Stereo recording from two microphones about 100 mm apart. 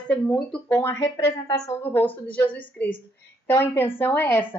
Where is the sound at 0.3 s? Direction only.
10° left (ahead or behind).